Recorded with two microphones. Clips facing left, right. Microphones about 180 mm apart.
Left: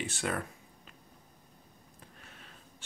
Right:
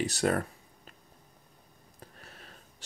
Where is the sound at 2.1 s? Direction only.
40° right (ahead or behind).